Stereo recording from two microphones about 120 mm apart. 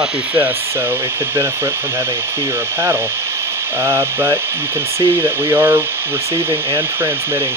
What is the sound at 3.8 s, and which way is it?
Speech, 20° right (ahead or behind).